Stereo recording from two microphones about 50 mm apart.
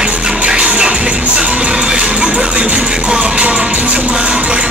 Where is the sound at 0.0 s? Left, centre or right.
Centre.